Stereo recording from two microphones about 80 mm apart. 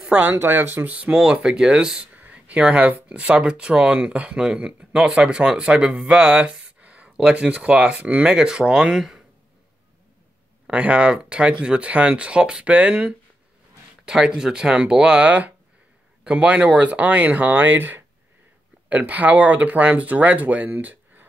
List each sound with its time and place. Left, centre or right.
0.0 s a sound: centre
0.3 s speech: right; by 9.2 s centre
10.7 s speech: centre